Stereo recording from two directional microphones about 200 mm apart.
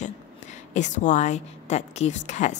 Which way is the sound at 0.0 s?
35° left (ahead or behind).